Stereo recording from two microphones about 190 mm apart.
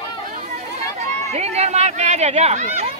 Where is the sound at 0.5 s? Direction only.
35° right (ahead or behind).